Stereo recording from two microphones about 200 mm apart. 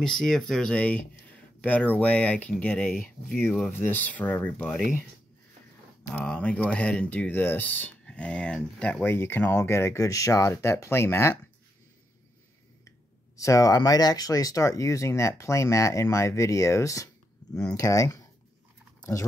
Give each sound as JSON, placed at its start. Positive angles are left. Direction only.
{"t": 0.0, "sound": "speech", "side_deg": 5}
{"t": 6.1, "sound": "speech", "side_deg": 5}
{"t": 13.4, "sound": "speech", "side_deg": 15}
{"t": 18.9, "sound": "a sound", "side_deg": 15}